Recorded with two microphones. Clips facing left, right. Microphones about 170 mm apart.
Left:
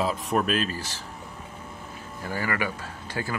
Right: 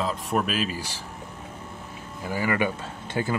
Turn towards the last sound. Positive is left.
turn(degrees=-20)  # may be behind; listen again after turning